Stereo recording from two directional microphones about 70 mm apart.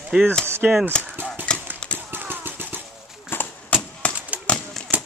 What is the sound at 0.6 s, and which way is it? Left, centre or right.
Speech, centre.